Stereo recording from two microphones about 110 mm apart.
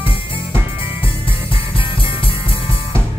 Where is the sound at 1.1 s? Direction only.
55° left (ahead or behind).